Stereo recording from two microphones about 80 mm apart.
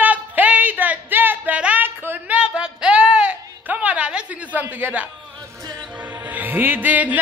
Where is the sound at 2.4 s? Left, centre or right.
Centre.